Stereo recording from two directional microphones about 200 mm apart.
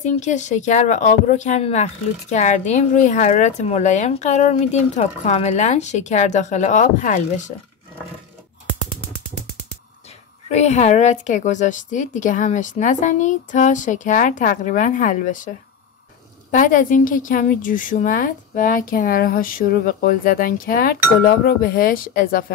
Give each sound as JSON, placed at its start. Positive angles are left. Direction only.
{"t": 0.0, "sound": "speech", "side_deg": 35}
{"t": 10.5, "sound": "speech", "side_deg": 35}
{"t": 16.5, "sound": "a woman's voice", "side_deg": 40}